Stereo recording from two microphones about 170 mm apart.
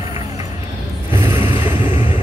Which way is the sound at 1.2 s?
15° right (ahead or behind).